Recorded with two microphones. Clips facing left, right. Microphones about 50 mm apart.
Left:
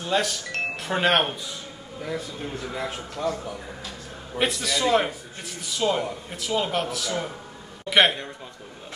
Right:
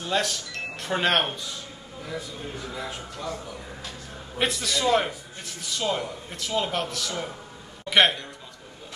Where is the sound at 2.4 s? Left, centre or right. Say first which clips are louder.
Left 3 dB; left.